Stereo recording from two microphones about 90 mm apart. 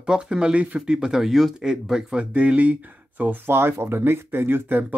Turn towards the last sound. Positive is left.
turn(degrees=-25)  # may be behind; listen again after turning